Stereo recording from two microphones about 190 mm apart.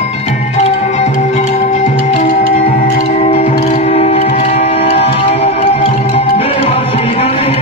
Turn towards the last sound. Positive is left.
turn(degrees=30)  # may be behind; listen again after turning